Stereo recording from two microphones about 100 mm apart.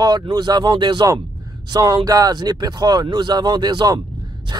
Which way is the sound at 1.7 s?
35° right (ahead or behind).